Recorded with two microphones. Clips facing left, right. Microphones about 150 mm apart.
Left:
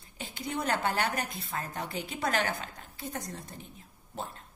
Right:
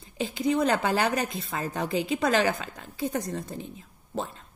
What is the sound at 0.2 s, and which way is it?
A woman's voice, 90° right.